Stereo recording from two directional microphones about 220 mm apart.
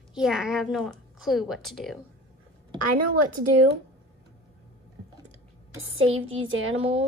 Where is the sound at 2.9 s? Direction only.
90° right.